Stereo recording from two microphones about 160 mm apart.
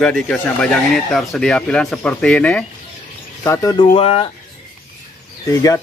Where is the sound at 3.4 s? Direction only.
20° left (ahead or behind).